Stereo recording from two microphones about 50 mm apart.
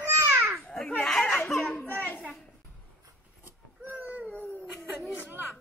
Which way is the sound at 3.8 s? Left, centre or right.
Right.